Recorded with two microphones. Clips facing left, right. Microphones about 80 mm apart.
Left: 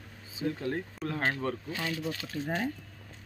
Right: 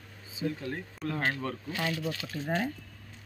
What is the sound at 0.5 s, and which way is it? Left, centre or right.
Speech, left.